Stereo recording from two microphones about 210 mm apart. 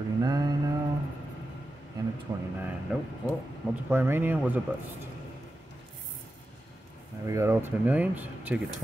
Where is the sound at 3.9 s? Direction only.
10° right (ahead or behind).